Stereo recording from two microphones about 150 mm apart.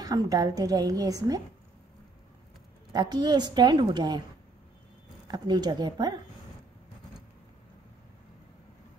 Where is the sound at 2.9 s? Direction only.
25° right (ahead or behind).